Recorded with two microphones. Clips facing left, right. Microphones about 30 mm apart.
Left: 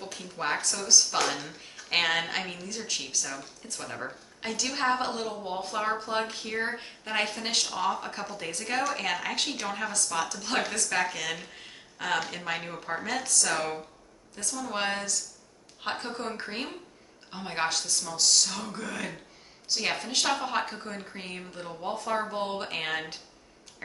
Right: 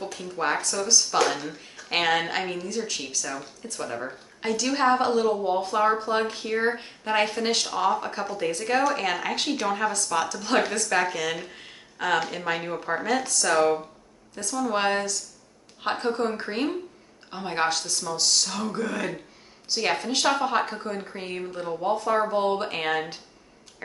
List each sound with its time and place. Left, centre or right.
0.0 s speech: centre